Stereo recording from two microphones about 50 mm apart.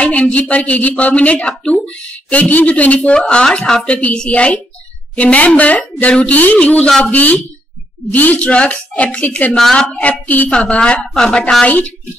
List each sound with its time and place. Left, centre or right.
0.0 s a woman's voice: left
3.2 s a woman's voice: centre
9.5 s speech: centre
9.9 s a woman's voice: left
10.5 s a woman's voice: left
11.0 s speech: centre
11.6 s a woman's voice: left